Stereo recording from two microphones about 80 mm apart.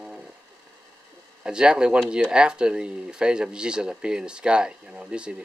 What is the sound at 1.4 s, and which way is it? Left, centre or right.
Speech, centre.